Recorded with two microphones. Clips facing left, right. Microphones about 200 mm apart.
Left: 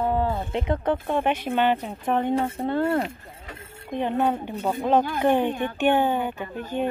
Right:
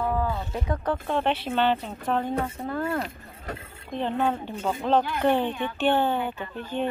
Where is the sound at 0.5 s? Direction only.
20° left (ahead or behind).